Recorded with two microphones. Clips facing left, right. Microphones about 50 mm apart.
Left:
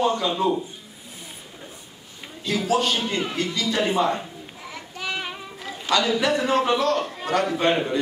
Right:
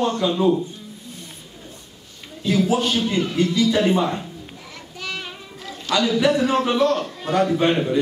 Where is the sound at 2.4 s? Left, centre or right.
Centre.